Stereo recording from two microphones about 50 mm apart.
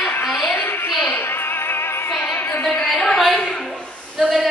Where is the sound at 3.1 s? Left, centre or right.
Centre.